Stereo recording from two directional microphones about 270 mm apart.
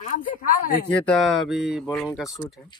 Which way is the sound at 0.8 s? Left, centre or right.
Centre.